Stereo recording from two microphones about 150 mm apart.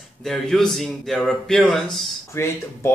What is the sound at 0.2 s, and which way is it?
Speech, centre (ahead or behind).